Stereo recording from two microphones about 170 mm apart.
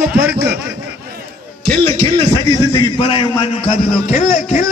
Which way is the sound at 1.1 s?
55° right (ahead or behind).